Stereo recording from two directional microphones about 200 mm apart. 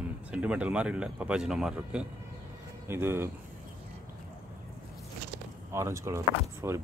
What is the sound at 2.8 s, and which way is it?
Speech, 10° right (ahead or behind).